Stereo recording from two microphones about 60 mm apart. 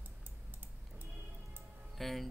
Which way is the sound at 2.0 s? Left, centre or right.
Centre.